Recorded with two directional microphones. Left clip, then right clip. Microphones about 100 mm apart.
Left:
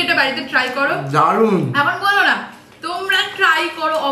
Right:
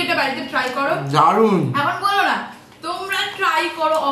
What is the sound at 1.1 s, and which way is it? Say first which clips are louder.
Speech: right 1 dB; 15° right (ahead or behind).